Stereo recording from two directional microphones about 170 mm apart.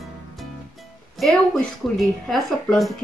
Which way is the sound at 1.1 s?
Centre (ahead or behind).